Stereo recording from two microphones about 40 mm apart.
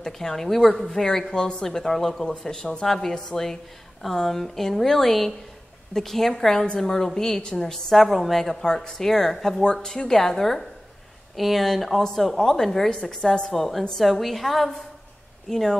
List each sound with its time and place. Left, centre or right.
0.0 s a woman's voice: centre
0.8 s a woman's voice: centre
13.5 s a woman's voice: centre